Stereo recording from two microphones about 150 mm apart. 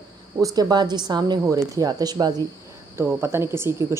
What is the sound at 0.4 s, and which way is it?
A woman's voice, 25° right (ahead or behind).